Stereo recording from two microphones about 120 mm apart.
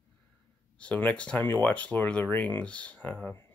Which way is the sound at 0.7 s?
10° left (ahead or behind).